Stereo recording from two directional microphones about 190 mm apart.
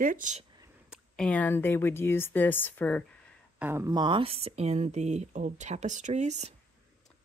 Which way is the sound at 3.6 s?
15° right (ahead or behind).